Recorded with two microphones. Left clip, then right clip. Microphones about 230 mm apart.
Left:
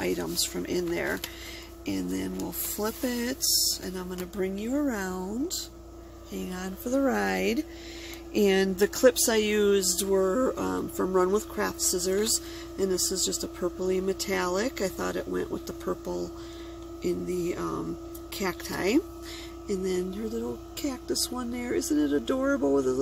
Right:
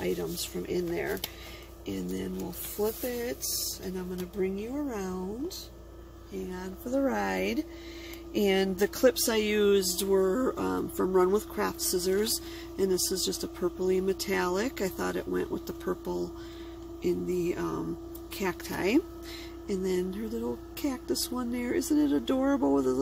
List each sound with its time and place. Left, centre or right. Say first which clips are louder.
0.0 s speech: left 3 dB; left
6.3 s music: left 1 dB; left
7.0 s speech: left 2 dB; centre